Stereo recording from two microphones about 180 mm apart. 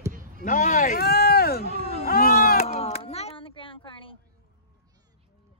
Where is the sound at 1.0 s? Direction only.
60° left (ahead or behind).